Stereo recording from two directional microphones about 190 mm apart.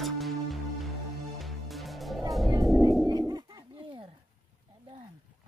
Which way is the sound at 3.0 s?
20° right (ahead or behind).